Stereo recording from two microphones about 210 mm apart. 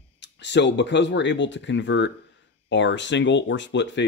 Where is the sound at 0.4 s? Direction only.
55° left (ahead or behind).